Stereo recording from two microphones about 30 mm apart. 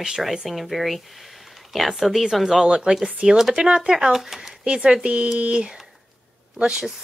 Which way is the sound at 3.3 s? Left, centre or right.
Centre.